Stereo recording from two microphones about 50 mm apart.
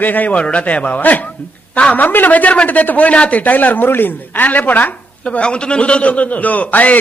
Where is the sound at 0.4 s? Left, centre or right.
Left.